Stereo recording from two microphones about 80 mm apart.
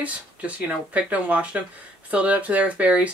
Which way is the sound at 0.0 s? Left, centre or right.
Centre.